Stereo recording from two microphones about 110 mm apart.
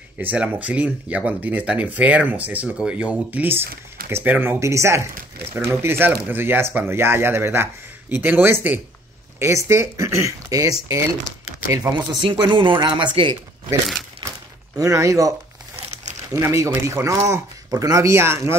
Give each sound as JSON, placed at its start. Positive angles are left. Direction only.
{"t": 0.2, "sound": "speech", "side_deg": -15}
{"t": 12.3, "sound": "speech", "side_deg": -50}
{"t": 14.8, "sound": "speech", "side_deg": -30}